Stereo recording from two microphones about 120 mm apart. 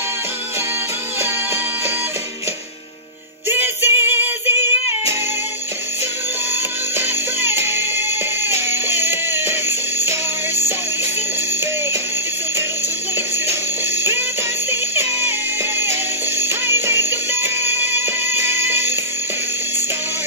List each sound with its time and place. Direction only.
3.4 s music: 15° right (ahead or behind)
7.0 s music: 20° right (ahead or behind)
13.5 s music: 20° right (ahead or behind)
16.3 s music: 20° right (ahead or behind)